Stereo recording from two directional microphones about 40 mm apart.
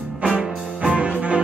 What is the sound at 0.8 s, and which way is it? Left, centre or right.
Music, right.